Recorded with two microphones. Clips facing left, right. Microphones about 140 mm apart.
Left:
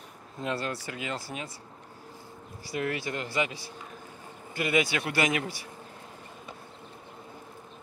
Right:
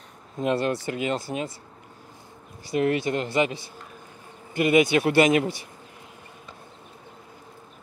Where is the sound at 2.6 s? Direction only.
20° right (ahead or behind).